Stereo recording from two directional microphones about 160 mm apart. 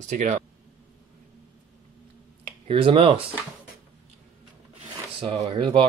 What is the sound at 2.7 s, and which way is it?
Speech, 35° right (ahead or behind).